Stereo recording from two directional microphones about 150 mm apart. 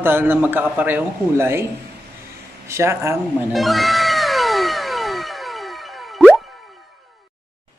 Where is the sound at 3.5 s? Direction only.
Centre (ahead or behind).